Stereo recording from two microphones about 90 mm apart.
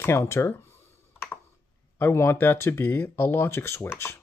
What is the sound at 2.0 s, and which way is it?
Speech, 30° left (ahead or behind).